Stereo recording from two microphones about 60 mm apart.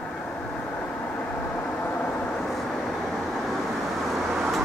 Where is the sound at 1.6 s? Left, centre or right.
Left.